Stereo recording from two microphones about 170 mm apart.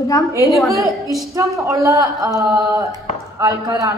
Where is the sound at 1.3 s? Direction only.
15° right (ahead or behind).